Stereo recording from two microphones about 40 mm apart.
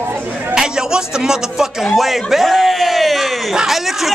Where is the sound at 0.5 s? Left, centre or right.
Centre.